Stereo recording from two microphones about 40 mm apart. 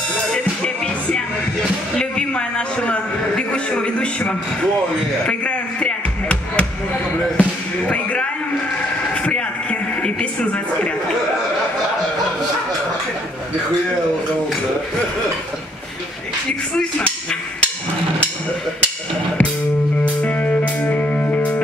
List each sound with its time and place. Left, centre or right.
2.0 s a sound: left
5.8 s music: left
20.2 s music: left